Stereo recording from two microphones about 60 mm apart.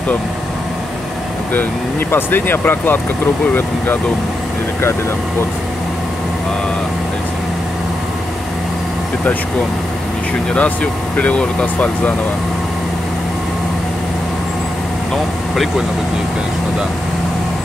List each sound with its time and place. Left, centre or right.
1.5 s speech: left
10.5 s speech: left